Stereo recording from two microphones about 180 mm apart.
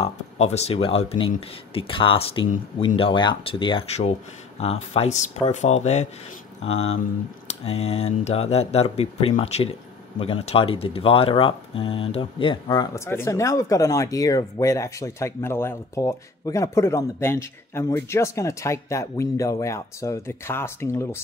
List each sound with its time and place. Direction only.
0.0 s speech: 35° left (ahead or behind); by 21.2 s 15° left (ahead or behind)